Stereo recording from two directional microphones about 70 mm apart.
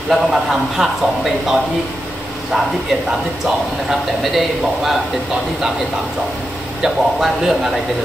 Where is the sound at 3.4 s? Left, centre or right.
Centre.